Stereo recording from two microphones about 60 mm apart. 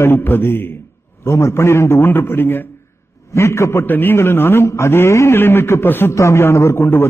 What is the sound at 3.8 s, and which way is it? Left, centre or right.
A man's voice, left.